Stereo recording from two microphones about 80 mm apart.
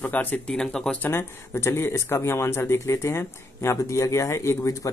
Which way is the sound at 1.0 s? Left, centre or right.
Left.